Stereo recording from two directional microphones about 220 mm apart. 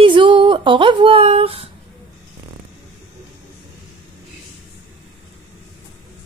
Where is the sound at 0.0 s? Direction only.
20° right (ahead or behind).